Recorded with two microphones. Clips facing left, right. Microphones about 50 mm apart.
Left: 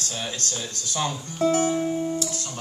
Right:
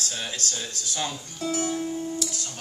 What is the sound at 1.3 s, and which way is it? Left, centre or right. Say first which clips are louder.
Music: left 7 dB; left.